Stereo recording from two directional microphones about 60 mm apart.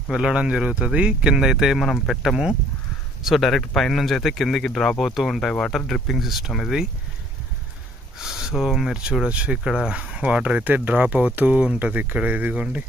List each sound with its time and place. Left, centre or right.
0.1 s speech: centre
8.2 s speech: centre; by 12.8 s right